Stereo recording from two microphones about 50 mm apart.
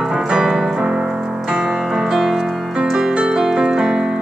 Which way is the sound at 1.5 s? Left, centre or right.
Centre.